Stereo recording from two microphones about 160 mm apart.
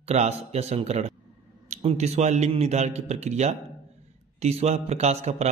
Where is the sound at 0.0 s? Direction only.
45° right (ahead or behind).